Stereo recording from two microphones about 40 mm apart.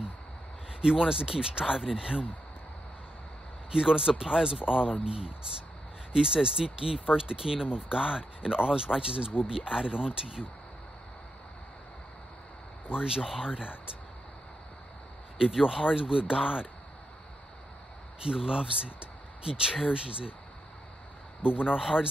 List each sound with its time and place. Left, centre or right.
0.7 s speech: centre
3.7 s speech: centre
6.1 s speech: centre
12.9 s speech: centre
15.3 s speech: centre
18.2 s speech: right
21.4 s speech: right